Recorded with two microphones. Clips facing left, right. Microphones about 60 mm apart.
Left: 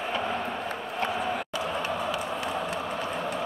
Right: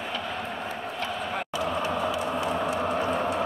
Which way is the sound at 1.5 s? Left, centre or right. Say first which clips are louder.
Right 2 dB; left.